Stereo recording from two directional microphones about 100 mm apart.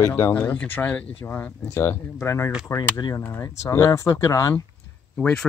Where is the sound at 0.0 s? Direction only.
25° left (ahead or behind).